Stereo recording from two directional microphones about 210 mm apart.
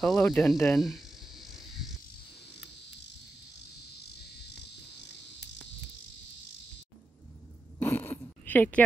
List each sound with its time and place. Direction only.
0.0 s speech: centre (ahead or behind)
0.7 s cricket: centre (ahead or behind)
4.9 s cricket: 55° left (ahead or behind)
7.8 s a sound: 10° left (ahead or behind)